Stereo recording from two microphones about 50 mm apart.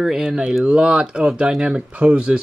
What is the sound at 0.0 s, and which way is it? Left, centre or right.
Speech, centre.